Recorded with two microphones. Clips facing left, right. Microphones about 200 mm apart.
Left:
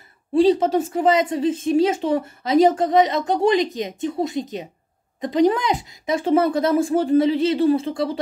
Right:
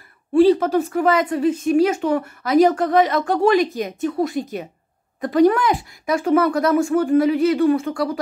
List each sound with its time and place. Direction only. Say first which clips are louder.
0.3 s a woman's voice: right 2 dB; 25° left (ahead or behind)